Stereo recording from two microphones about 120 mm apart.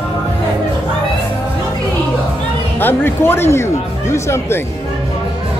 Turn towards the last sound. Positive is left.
turn(degrees=20)  # may be behind; listen again after turning